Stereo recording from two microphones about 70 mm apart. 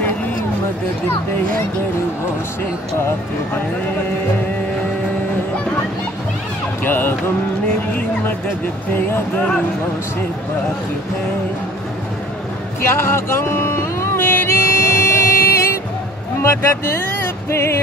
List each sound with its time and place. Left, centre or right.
6.8 s speech: left
8.9 s speech: left
12.8 s music: left